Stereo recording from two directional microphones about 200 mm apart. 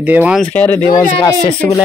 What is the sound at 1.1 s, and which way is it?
Speech, 25° left (ahead or behind).